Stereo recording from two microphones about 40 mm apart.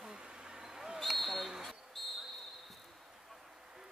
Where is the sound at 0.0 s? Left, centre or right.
Right.